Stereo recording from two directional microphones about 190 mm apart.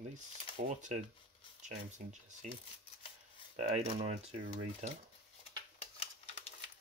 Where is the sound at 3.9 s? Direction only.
30° right (ahead or behind).